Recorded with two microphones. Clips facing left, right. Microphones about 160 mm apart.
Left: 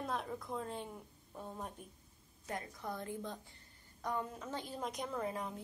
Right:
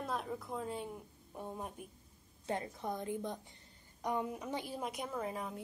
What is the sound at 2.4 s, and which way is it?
A woman's voice, 25° right (ahead or behind).